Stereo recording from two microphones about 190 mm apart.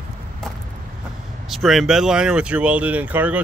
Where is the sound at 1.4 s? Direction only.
Centre (ahead or behind).